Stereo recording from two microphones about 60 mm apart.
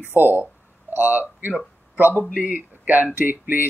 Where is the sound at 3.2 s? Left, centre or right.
Right.